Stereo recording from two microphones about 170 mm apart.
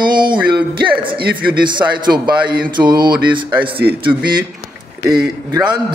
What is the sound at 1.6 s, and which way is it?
Speech, 25° right (ahead or behind).